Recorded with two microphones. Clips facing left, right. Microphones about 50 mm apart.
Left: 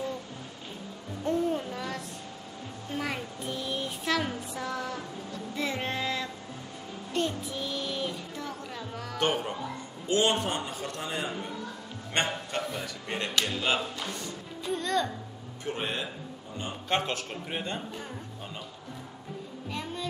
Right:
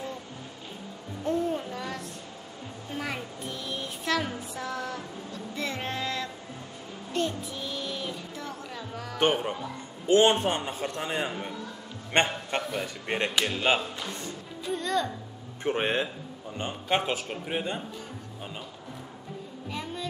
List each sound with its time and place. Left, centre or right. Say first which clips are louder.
1.2 s music: even; centre
9.2 s a man's voice: right 3 dB; right
12.1 s a man's voice: right 4 dB; right
13.3 s a man's voice: right 1 dB; centre
14.6 s music: even; centre
15.6 s speech: right 6 dB; right
16.9 s a man's voice: right 2 dB; centre
19.7 s a sound: even; centre